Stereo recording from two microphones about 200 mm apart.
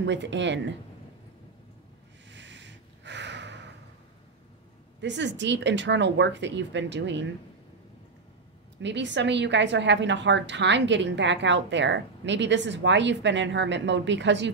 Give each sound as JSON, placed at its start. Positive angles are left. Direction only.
{"t": 0.0, "sound": "a woman's voice", "side_deg": -65}
{"t": 2.2, "sound": "a sound", "side_deg": -65}
{"t": 5.0, "sound": "a woman's voice", "side_deg": -65}
{"t": 8.8, "sound": "a woman's voice", "side_deg": -60}